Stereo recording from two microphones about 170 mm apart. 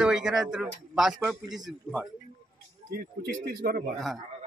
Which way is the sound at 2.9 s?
65° right (ahead or behind).